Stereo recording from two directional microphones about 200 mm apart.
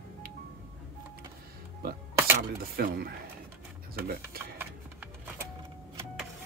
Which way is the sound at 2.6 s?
50° right (ahead or behind).